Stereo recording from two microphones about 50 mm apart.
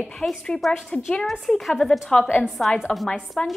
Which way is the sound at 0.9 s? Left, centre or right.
Left.